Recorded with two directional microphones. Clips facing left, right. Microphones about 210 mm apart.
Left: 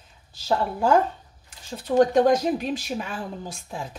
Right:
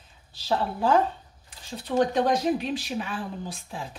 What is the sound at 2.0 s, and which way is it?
A woman's voice, 45° left (ahead or behind).